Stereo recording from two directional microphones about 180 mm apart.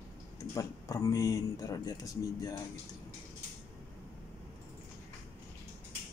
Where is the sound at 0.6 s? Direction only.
15° left (ahead or behind).